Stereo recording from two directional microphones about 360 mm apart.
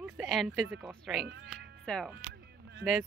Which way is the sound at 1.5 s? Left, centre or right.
Centre.